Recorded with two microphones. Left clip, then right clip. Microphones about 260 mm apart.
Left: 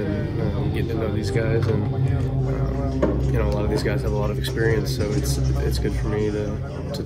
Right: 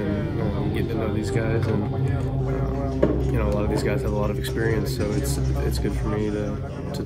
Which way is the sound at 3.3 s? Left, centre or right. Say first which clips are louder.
Left 1 dB; centre.